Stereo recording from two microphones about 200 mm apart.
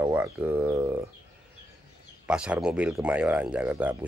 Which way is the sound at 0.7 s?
15° right (ahead or behind).